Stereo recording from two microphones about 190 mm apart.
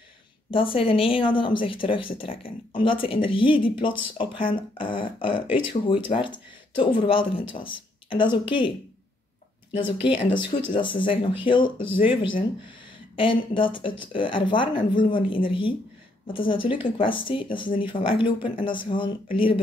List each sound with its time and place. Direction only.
0.5 s speech: 30° left (ahead or behind)
9.8 s speech: 25° left (ahead or behind)